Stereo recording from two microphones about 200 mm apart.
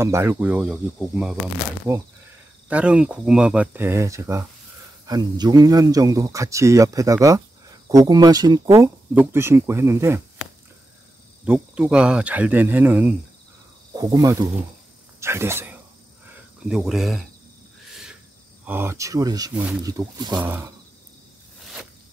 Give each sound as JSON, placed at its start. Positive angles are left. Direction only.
{"t": 0.0, "sound": "a man's voice", "side_deg": -15}
{"t": 2.7, "sound": "a man's voice", "side_deg": -5}
{"t": 11.4, "sound": "a man's voice", "side_deg": -5}
{"t": 17.8, "sound": "owl", "side_deg": 0}
{"t": 18.7, "sound": "a man's voice", "side_deg": -10}